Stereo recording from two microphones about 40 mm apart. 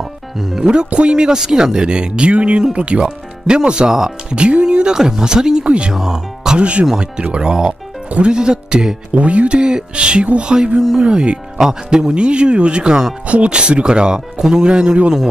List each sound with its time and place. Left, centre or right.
0.4 s speech: centre
0.9 s speech: right
3.9 s speech: centre
4.4 s speech: right
5.9 s speech: centre
6.6 s speech: right
7.3 s speech: centre
9.1 s speech: right